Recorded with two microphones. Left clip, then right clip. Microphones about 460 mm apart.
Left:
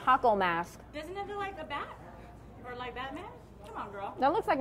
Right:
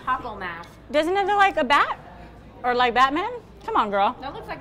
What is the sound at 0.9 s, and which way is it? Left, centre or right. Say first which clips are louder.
Speech: right 19 dB; right.